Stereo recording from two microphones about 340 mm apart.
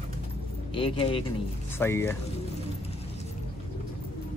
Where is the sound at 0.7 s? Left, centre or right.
Centre.